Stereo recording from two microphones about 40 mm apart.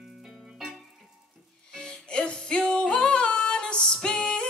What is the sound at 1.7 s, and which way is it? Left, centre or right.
Music, left.